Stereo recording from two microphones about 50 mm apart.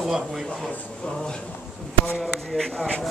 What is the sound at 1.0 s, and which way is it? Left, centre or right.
A man's voice, centre.